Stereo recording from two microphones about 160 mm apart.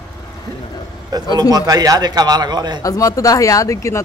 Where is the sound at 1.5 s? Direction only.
25° right (ahead or behind).